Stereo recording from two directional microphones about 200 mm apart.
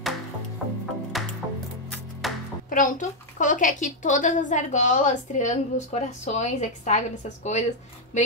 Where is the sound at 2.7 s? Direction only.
40° left (ahead or behind).